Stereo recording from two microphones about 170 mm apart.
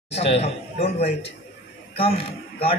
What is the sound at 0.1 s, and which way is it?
Speech, 35° left (ahead or behind).